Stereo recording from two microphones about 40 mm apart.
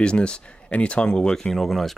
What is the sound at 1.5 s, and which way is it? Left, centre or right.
Speech, centre.